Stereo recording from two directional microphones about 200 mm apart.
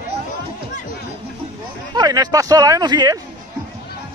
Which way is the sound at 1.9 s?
20° right (ahead or behind).